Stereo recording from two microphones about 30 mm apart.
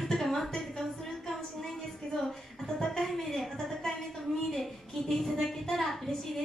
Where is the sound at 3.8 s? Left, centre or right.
Centre.